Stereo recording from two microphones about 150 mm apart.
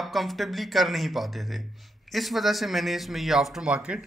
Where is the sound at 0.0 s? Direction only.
Centre (ahead or behind).